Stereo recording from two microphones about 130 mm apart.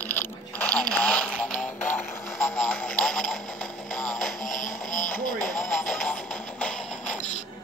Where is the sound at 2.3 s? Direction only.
5° left (ahead or behind).